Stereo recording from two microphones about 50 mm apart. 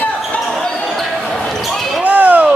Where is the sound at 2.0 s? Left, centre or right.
Right.